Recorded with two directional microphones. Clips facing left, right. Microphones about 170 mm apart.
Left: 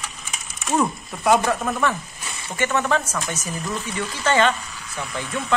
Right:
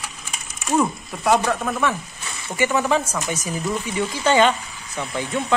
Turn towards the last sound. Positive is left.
turn(degrees=-25)  # may be behind; listen again after turning